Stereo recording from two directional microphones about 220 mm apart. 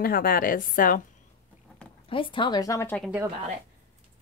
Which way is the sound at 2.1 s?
20° left (ahead or behind).